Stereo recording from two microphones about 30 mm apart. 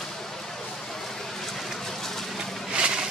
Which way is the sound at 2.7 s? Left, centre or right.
Right.